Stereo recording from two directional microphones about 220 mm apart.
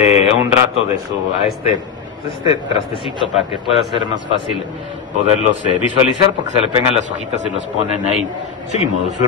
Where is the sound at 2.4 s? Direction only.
25° left (ahead or behind).